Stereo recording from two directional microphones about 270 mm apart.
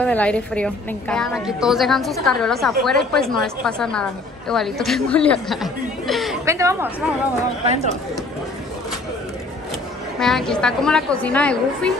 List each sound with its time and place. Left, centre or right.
0.0 s a woman's voice: centre
6.4 s a woman's voice: centre
7.6 s speech: right
10.1 s a woman's voice: centre